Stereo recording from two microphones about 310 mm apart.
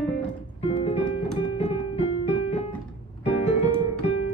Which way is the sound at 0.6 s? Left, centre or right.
Centre.